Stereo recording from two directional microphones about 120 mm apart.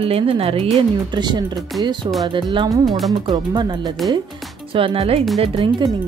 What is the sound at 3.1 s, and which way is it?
Speech, 35° right (ahead or behind).